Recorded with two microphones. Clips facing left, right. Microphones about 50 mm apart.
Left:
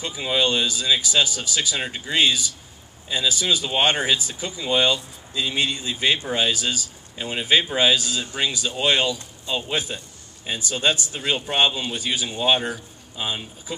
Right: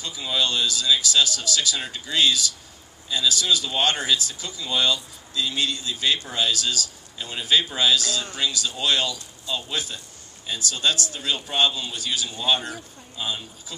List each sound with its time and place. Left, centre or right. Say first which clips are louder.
0.0 s speech: left 3 dB; left